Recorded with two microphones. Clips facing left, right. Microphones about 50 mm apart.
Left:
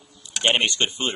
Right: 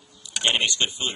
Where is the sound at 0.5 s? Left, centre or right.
Left.